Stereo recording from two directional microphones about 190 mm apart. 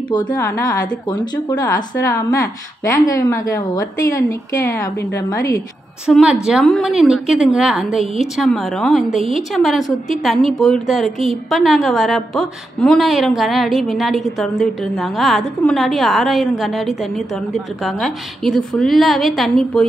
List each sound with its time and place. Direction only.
0.1 s a woman's voice: 20° left (ahead or behind)
6.0 s speech: 5° right (ahead or behind)